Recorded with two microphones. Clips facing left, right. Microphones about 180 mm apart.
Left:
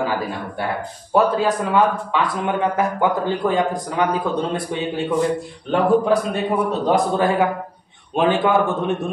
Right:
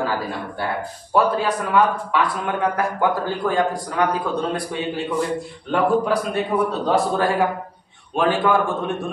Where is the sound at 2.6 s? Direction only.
20° left (ahead or behind).